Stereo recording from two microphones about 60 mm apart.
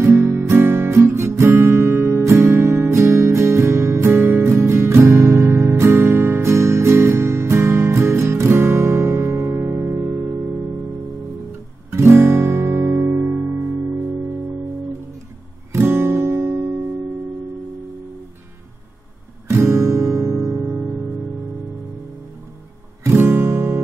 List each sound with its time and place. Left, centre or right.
0.0 s guitar: right
2.4 s music: right
11.9 s guitar: right
15.7 s music: right
19.5 s music: right
23.0 s guitar: right